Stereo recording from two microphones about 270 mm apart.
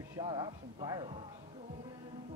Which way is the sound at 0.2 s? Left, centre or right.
Centre.